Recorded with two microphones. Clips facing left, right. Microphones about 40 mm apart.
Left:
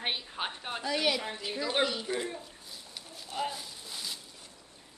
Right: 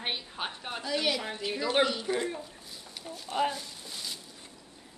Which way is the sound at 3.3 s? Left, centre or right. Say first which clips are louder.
Right 5 dB; centre.